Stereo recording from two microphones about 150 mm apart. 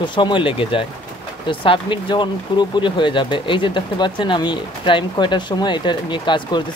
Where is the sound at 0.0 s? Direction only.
30° left (ahead or behind).